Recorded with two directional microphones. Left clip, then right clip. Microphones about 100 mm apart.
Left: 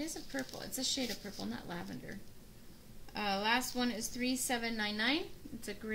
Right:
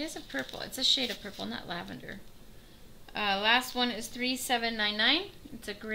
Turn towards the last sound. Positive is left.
turn(degrees=-20)  # may be behind; listen again after turning